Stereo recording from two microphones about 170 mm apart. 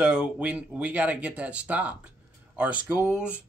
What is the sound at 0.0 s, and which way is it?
Speech, 5° right (ahead or behind).